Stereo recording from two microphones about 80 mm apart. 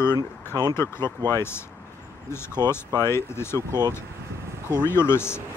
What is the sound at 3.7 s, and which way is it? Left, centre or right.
Speech, right.